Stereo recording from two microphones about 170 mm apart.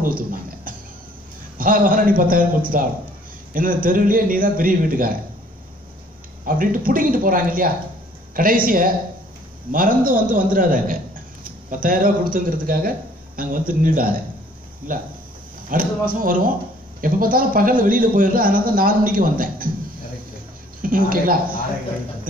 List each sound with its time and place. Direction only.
0.0 s a man's voice: 55° right (ahead or behind)
6.4 s a man's voice: 55° right (ahead or behind)
20.8 s a man's voice: 55° right (ahead or behind)